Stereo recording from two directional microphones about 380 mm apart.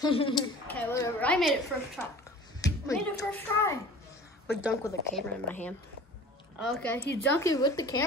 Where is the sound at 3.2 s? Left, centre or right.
Centre.